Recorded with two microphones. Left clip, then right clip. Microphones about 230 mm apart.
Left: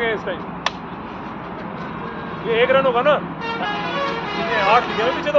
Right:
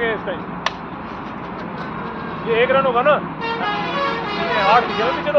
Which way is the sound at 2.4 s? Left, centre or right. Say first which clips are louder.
Even; left.